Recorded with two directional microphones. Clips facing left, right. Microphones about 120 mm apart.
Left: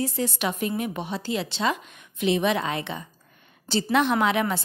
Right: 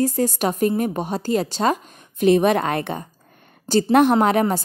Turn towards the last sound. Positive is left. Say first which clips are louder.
# right 6 dB
turn(degrees=-40)  # may be behind; listen again after turning